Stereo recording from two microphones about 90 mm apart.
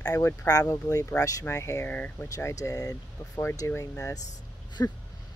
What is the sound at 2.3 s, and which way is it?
Speech, 35° left (ahead or behind).